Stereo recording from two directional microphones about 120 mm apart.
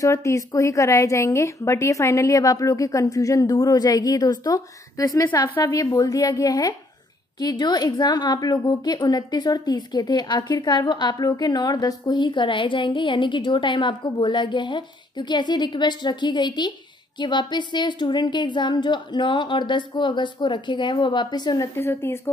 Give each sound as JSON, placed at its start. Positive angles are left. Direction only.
{"t": 0.0, "sound": "a woman's voice", "side_deg": 25}
{"t": 21.7, "sound": "a woman's voice", "side_deg": 20}